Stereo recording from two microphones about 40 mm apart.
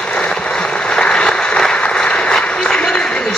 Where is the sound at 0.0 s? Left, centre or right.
Left.